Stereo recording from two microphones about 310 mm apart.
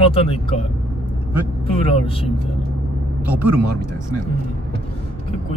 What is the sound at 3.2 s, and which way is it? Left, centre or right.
Speech, centre.